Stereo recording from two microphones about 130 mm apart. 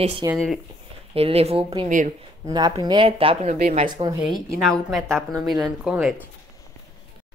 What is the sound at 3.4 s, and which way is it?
Speech, 65° right (ahead or behind).